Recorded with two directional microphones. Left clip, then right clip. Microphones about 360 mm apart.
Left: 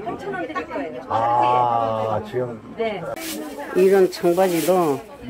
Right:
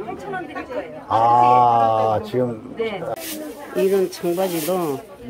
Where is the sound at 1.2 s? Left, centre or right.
Right.